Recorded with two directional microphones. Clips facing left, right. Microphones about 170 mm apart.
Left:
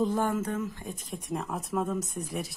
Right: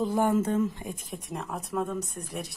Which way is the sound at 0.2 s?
25° right (ahead or behind).